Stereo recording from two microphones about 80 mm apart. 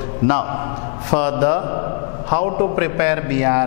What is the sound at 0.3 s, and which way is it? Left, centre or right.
A man's voice, centre.